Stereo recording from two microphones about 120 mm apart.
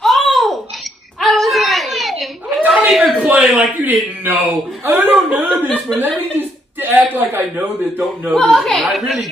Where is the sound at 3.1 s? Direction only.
10° right (ahead or behind).